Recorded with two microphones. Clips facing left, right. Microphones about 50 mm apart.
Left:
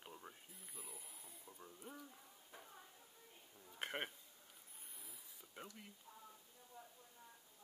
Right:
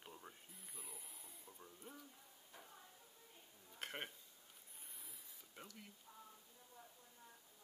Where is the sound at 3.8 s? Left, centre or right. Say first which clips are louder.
Left 4 dB; centre.